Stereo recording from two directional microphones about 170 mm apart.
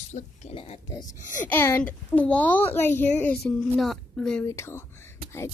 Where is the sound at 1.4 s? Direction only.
15° left (ahead or behind).